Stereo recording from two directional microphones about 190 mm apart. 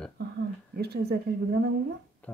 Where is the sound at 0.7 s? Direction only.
55° right (ahead or behind).